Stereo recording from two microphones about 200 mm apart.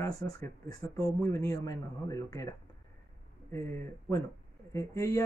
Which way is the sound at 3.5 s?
15° left (ahead or behind).